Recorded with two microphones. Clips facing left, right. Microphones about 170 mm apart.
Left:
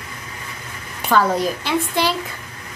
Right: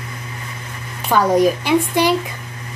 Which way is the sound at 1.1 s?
15° right (ahead or behind).